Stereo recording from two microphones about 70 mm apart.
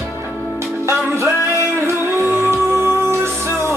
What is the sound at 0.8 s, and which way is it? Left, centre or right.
Music, right.